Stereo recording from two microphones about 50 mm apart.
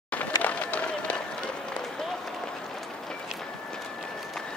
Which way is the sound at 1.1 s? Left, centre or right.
Centre.